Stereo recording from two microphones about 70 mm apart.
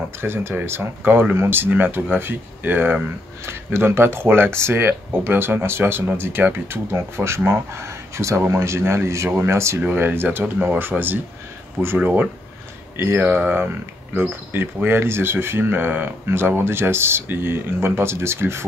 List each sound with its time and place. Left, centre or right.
0.2 s speech: right
9.8 s speech: right
12.9 s speech: right